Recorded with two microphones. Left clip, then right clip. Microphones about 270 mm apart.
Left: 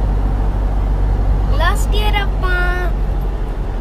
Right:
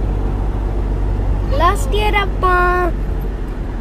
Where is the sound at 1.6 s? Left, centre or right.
Centre.